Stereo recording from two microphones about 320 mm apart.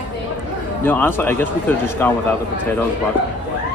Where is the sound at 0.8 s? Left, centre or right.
Centre.